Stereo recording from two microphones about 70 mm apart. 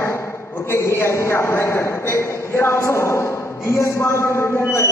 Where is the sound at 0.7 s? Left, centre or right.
Left.